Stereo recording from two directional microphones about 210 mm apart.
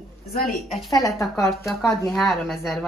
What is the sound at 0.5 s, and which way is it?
Speech, centre (ahead or behind).